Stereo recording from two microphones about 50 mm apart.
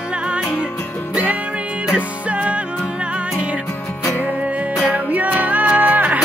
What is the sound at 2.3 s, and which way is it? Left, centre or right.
Music, right.